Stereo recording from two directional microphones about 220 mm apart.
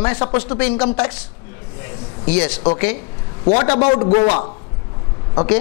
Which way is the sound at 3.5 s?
20° left (ahead or behind).